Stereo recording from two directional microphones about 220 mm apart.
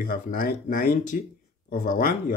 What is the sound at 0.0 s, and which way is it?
Speech, 40° left (ahead or behind).